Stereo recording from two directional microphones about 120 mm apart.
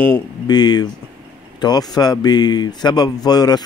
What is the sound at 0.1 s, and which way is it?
Speech, 35° left (ahead or behind).